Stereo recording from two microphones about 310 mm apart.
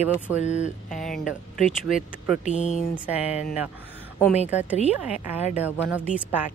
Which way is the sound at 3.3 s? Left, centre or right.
Left.